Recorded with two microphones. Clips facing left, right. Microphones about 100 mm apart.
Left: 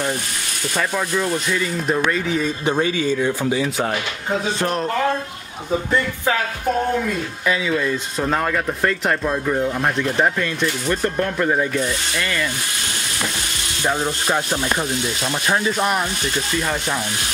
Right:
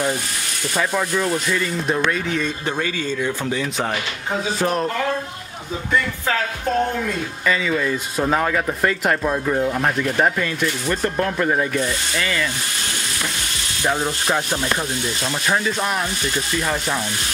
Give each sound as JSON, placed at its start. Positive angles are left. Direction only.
{"t": 0.7, "sound": "speech", "side_deg": 0}
{"t": 2.7, "sound": "speech", "side_deg": 20}
{"t": 4.5, "sound": "speech", "side_deg": -5}
{"t": 7.4, "sound": "speech", "side_deg": 5}
{"t": 13.8, "sound": "speech", "side_deg": 0}